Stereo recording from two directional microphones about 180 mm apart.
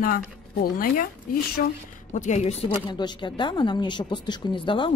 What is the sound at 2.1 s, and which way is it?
Speech, 40° left (ahead or behind).